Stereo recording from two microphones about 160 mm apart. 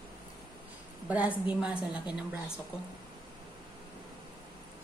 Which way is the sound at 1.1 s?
10° right (ahead or behind).